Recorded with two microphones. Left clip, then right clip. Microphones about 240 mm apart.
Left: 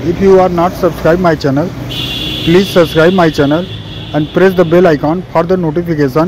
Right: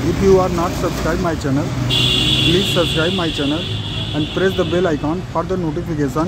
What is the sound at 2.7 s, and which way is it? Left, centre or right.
Speech, left.